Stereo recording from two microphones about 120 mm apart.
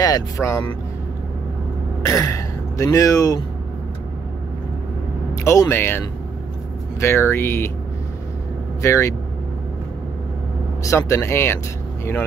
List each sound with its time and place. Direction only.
0.0 s speech: 30° left (ahead or behind)
2.0 s speech: 25° left (ahead or behind)
5.3 s speech: 25° left (ahead or behind)
8.8 s speech: 25° left (ahead or behind)
10.8 s speech: 25° left (ahead or behind)